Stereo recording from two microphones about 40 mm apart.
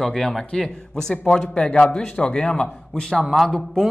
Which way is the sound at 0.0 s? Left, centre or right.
Centre.